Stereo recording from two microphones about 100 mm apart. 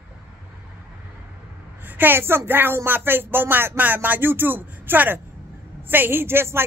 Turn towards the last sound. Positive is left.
turn(degrees=-25)  # may be behind; listen again after turning